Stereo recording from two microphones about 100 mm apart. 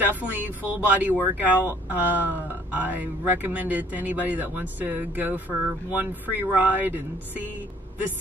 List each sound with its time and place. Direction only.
0.0 s speech: 20° right (ahead or behind)